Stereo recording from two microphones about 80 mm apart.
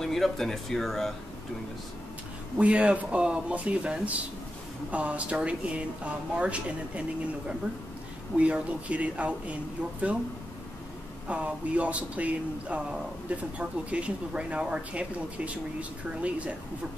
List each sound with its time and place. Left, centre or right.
0.0 s speech: centre
2.5 s speech: centre
11.2 s speech: centre